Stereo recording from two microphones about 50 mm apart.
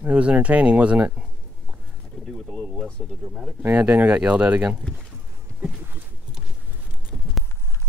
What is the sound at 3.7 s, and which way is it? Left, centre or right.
Speech, right.